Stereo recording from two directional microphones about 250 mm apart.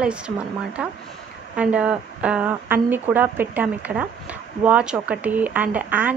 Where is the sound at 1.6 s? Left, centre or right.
Centre.